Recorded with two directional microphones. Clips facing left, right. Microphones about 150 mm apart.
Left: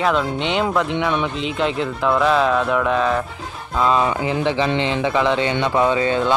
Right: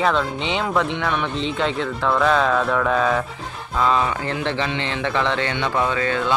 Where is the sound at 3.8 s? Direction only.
20° left (ahead or behind).